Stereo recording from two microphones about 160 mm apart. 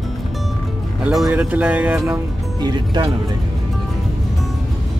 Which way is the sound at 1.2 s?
10° right (ahead or behind).